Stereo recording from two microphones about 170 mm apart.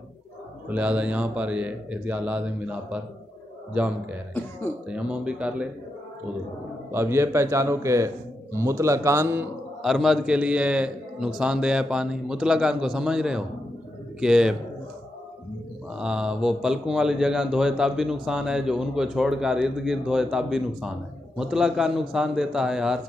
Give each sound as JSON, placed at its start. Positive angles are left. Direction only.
{"t": 0.7, "sound": "speech", "side_deg": -5}
{"t": 6.9, "sound": "speech", "side_deg": -15}
{"t": 9.8, "sound": "a man's voice", "side_deg": 0}
{"t": 16.0, "sound": "a man's voice", "side_deg": -5}